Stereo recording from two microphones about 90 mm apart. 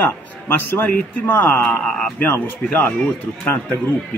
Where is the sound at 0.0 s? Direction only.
25° left (ahead or behind).